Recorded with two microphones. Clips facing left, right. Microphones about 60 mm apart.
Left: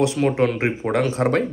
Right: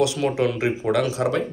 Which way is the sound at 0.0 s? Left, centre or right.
Left.